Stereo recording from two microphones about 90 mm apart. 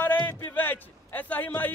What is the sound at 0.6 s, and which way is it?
A man's voice, 20° left (ahead or behind).